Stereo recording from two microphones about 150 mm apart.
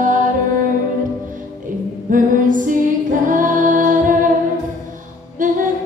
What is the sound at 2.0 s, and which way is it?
Music, 65° right (ahead or behind).